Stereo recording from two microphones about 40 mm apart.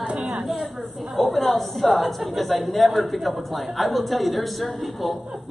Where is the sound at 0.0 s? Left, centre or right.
Right.